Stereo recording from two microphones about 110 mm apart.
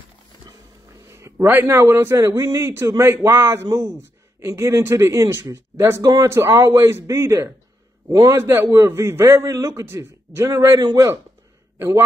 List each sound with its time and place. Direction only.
1.1 s speech: 20° right (ahead or behind)